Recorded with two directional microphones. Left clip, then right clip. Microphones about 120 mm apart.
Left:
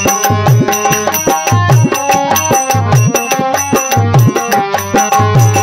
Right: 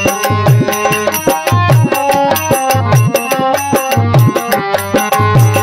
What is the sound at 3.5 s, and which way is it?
Music, 25° left (ahead or behind).